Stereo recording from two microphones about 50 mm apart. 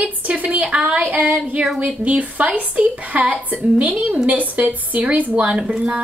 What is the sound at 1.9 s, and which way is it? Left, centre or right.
A woman's voice, right.